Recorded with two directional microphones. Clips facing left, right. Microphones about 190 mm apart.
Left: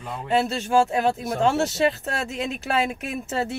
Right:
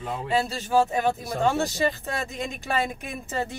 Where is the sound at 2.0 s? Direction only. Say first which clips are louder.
Left 3 dB; 75° left (ahead or behind).